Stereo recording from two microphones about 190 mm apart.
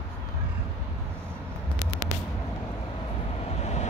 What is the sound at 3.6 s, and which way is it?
Vehicle, 35° left (ahead or behind).